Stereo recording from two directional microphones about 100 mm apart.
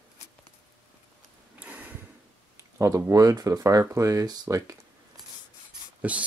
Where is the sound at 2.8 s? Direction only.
30° right (ahead or behind).